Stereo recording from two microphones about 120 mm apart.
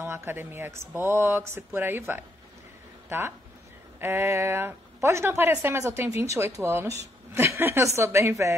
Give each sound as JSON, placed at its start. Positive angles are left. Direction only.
{"t": 0.0, "sound": "a woman's voice", "side_deg": -20}